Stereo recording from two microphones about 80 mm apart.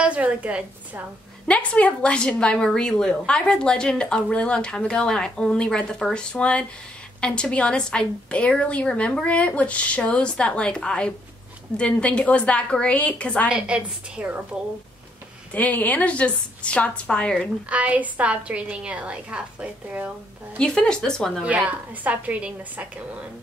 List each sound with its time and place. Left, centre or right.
0.0 s a sound: centre
1.5 s a woman's voice: centre
13.5 s a woman's voice: centre
15.5 s a woman's voice: centre
17.6 s a woman's voice: centre
20.5 s a woman's voice: centre
21.4 s a woman's voice: centre